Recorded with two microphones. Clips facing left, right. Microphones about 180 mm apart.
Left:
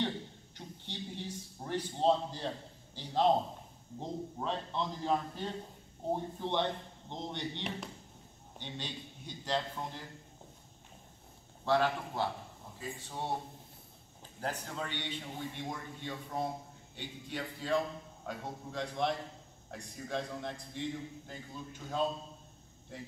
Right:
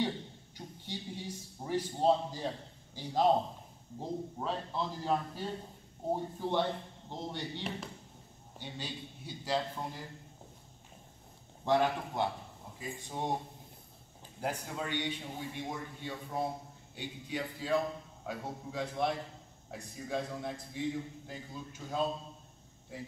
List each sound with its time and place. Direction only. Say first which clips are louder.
0.6 s a man's voice: right 1 dB; 10° right (ahead or behind)
11.6 s a man's voice: right 1 dB; 15° right (ahead or behind)
14.4 s a man's voice: right 2 dB; 10° right (ahead or behind)